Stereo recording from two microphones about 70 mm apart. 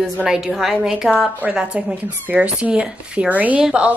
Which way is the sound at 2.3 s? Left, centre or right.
Centre.